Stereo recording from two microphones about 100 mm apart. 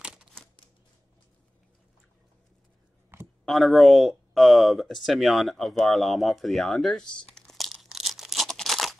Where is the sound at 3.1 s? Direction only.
25° right (ahead or behind).